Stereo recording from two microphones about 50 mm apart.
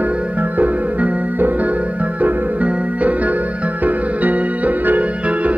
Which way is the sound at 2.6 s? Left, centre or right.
Right.